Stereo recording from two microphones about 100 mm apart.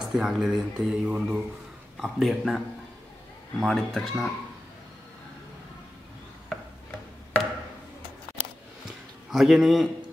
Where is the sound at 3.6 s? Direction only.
5° left (ahead or behind).